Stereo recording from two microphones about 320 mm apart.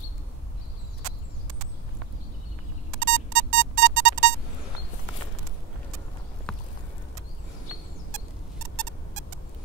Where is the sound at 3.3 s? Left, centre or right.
Right.